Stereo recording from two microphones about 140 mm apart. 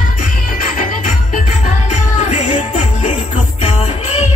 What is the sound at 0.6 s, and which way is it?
Music, 75° left (ahead or behind).